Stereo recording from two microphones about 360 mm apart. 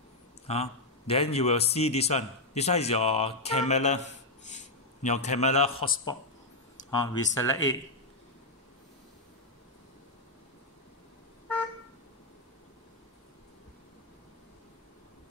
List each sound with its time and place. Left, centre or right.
0.5 s a man's voice: centre